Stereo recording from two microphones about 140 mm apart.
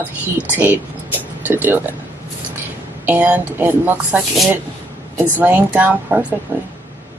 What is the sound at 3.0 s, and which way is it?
A woman's voice, 15° right (ahead or behind).